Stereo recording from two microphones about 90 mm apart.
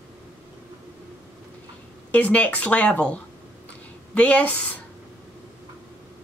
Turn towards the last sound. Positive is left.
turn(degrees=15)  # may be behind; listen again after turning